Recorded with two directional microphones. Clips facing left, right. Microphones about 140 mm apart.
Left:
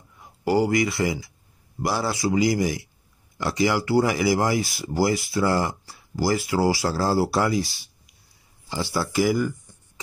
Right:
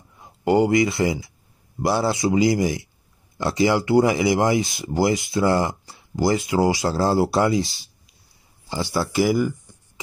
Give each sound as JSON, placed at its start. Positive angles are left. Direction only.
{"t": 0.2, "sound": "speech", "side_deg": -25}
{"t": 8.9, "sound": "speech", "side_deg": -20}